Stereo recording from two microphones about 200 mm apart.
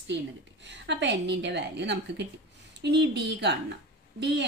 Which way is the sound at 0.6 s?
60° right (ahead or behind).